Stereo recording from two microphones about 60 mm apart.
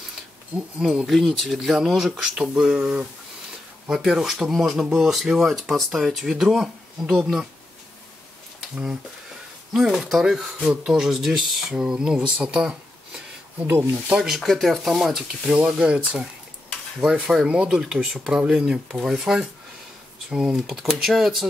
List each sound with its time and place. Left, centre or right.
0.7 s speech: centre
9.7 s speech: centre
13.7 s speech: right
14.2 s speech: centre
17.0 s speech: centre